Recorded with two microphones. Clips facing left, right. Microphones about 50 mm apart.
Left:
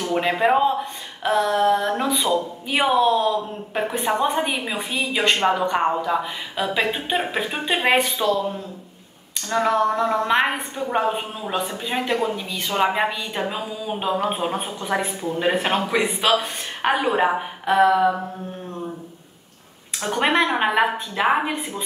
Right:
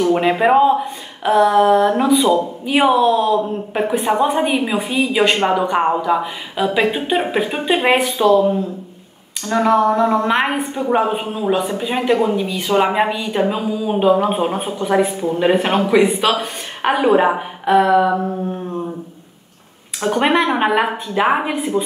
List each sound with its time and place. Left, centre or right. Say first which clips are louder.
0.1 s speech: right 1 dB; centre
1.2 s a sound: right 7 dB; centre
1.5 s speech: right 6 dB; centre
8.3 s speech: right 9 dB; right
9.6 s speech: right 5 dB; centre
12.2 s speech: right 7 dB; centre
20.0 s speech: right 4 dB; centre